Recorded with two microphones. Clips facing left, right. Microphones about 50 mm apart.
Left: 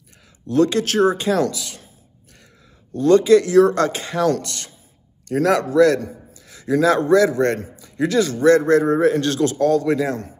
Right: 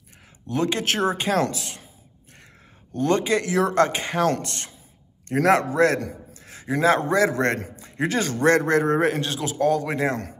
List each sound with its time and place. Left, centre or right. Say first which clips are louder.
0.5 s speech: left 6 dB; right
3.0 s a man's voice: left 8 dB; right
7.2 s a man's voice: left 4 dB; right
9.2 s a man's voice: left 5 dB; centre
9.9 s a man's voice: left 2 dB; right